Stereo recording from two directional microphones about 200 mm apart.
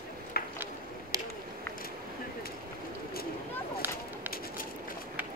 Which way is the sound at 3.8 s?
10° right (ahead or behind).